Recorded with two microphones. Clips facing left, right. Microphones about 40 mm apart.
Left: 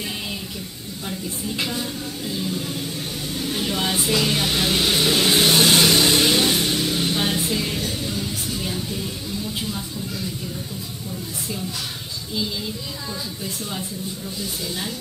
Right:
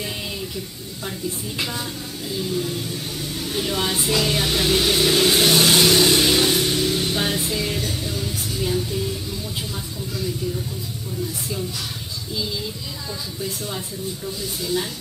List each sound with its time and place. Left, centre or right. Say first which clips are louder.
2.3 s music: right 4 dB; centre
3.6 s speech: right 1 dB; centre
4.1 s music: right 1 dB; centre
4.8 s vehicle: right 1 dB; left
5.1 s music: right 1 dB; centre
5.4 s vehicle: even; centre
6.4 s music: right 1 dB; left
7.1 s music: left 1 dB; centre